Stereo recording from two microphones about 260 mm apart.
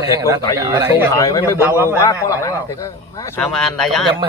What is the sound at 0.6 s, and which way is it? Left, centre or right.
Speech, centre.